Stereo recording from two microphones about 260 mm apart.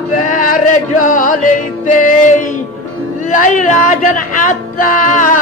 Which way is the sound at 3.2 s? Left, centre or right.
Left.